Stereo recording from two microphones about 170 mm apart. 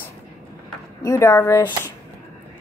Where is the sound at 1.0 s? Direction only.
15° left (ahead or behind).